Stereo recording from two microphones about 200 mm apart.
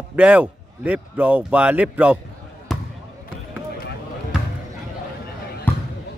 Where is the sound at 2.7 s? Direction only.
Centre (ahead or behind).